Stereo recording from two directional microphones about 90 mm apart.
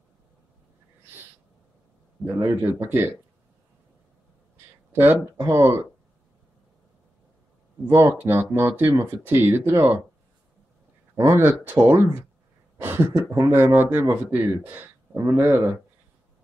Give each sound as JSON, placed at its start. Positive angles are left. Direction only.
{"t": 2.2, "sound": "speech", "side_deg": -30}
{"t": 4.9, "sound": "speech", "side_deg": -25}
{"t": 7.8, "sound": "speech", "side_deg": -30}
{"t": 11.1, "sound": "speech", "side_deg": -30}